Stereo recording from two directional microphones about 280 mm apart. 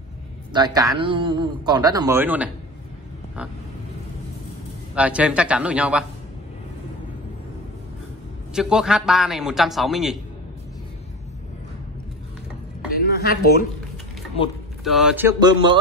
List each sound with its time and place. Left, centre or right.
0.5 s a man's voice: centre
4.9 s a man's voice: centre
8.5 s a man's voice: centre
13.0 s a woman's voice: left
14.8 s a man's voice: centre